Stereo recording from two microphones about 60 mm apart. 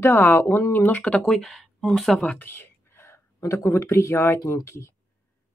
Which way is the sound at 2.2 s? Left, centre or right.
Left.